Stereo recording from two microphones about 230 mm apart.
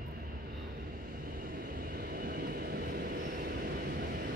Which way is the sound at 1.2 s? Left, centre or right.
Right.